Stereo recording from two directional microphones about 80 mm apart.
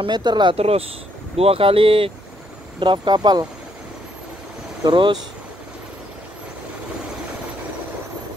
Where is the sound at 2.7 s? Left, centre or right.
Right.